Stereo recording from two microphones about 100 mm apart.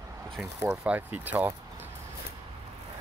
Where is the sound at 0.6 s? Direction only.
15° right (ahead or behind).